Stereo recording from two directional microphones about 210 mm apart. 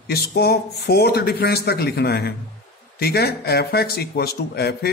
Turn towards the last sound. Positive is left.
turn(degrees=50)  # may be behind; listen again after turning